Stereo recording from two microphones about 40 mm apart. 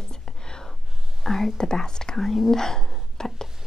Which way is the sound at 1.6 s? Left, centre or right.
Centre.